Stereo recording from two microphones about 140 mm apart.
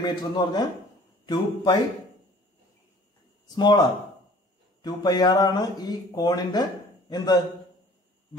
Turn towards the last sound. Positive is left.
turn(degrees=30)  # may be behind; listen again after turning